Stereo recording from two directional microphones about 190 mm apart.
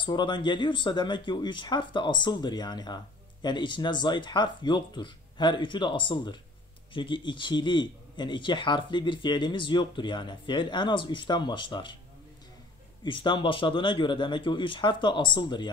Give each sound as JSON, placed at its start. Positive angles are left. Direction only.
{"t": 0.0, "sound": "a man's voice", "side_deg": 25}
{"t": 13.0, "sound": "a man's voice", "side_deg": 25}